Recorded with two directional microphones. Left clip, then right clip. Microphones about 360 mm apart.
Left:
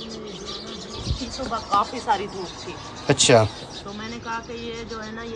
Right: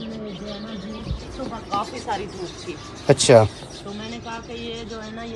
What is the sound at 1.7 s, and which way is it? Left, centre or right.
Speech, centre.